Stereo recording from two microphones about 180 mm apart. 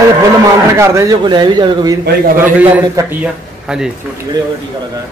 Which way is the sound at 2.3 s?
10° right (ahead or behind).